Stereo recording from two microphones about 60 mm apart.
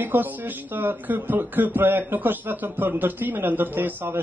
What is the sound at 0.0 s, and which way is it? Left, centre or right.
Speech, right.